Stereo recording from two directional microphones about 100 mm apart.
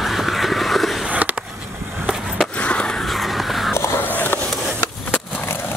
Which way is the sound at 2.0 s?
Centre (ahead or behind).